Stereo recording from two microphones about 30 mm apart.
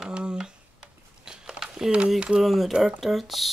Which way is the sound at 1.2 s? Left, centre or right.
Right.